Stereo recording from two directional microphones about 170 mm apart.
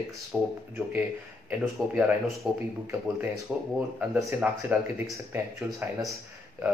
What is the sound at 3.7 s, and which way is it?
Speech, 10° right (ahead or behind).